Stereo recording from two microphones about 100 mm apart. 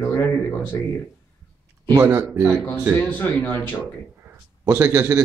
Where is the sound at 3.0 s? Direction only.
15° left (ahead or behind).